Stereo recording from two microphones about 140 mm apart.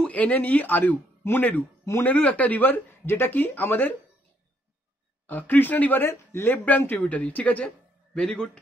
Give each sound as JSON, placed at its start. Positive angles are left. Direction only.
{"t": 0.0, "sound": "speech", "side_deg": 10}
{"t": 5.2, "sound": "speech", "side_deg": 10}